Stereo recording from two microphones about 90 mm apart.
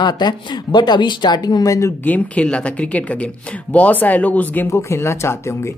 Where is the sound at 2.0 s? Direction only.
15° left (ahead or behind).